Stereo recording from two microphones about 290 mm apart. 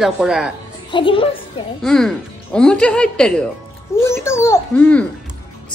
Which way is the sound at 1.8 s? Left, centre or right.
Centre.